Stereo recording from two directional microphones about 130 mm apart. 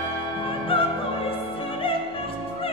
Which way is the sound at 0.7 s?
45° left (ahead or behind).